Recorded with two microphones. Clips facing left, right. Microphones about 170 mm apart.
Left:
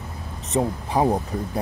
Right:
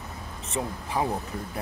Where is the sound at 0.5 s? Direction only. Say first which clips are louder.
Left 7 dB; 35° left (ahead or behind).